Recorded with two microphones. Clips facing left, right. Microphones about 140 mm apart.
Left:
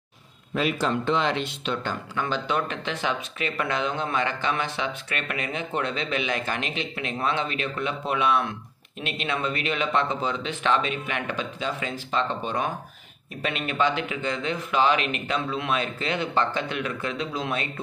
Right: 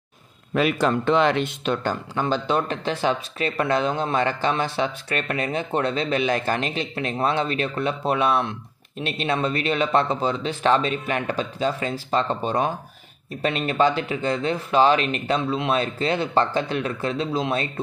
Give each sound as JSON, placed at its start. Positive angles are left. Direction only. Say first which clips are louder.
{"t": 0.6, "sound": "speech", "louder": "right 4 dB", "side_deg": -60}
{"t": 2.1, "sound": "speech", "louder": "right 3 dB", "side_deg": -35}